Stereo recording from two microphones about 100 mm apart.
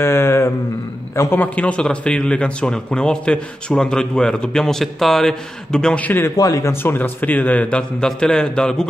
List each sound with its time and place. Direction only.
0.0 s a sound: 25° left (ahead or behind)
1.1 s a man's voice: 25° left (ahead or behind)
6.3 s a man's voice: 35° left (ahead or behind); by 8.8 s 10° left (ahead or behind)